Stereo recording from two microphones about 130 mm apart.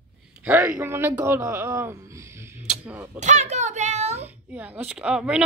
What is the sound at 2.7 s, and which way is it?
Fowl, 10° right (ahead or behind).